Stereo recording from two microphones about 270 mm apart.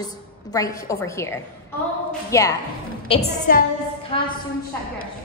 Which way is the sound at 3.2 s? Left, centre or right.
Left.